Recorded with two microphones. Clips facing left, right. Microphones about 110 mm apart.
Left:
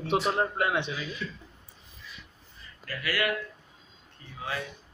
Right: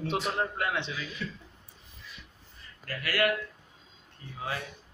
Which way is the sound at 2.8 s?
50° right (ahead or behind).